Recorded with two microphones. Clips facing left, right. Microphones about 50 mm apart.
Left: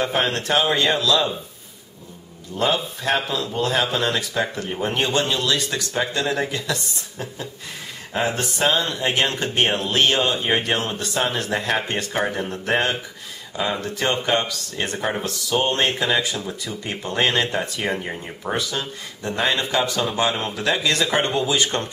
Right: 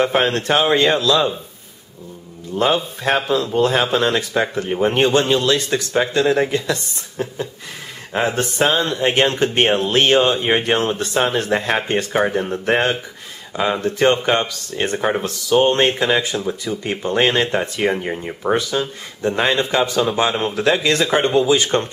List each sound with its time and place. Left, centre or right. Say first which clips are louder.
0.0 s speech: right 5 dB; right
2.5 s speech: right 4 dB; right
8.4 s speech: right 4 dB; right
10.6 s speech: right 5 dB; right
12.2 s speech: right 4 dB; centre
15.0 s speech: right 5 dB; centre
16.3 s speech: right 6 dB; centre
16.9 s speech: right 4 dB; right
21.7 s speech: right 7 dB; right